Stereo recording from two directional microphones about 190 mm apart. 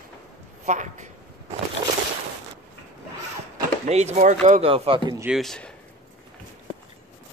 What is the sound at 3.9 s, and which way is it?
Speech, 35° right (ahead or behind).